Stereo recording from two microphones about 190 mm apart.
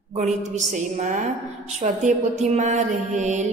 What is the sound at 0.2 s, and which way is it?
A woman's voice, 40° right (ahead or behind).